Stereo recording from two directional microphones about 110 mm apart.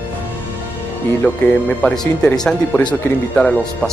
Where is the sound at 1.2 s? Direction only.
10° left (ahead or behind).